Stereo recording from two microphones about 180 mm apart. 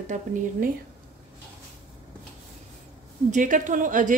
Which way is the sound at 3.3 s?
45° right (ahead or behind).